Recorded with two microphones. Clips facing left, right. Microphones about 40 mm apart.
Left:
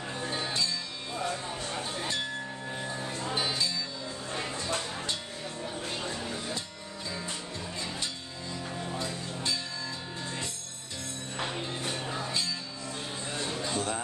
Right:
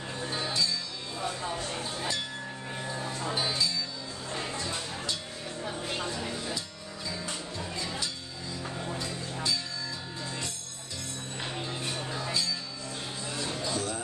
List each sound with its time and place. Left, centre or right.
0.5 s music: left
2.8 s music: centre
3.3 s music: left
6.3 s music: left
8.9 s music: left
12.1 s music: left
13.3 s a sound: left